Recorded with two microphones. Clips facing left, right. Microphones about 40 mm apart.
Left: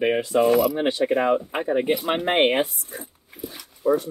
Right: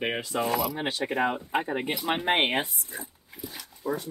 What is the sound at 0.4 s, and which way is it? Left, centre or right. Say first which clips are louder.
Mechanisms: left 9 dB; centre.